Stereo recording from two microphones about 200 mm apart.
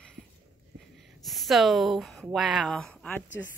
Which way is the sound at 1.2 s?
Centre (ahead or behind).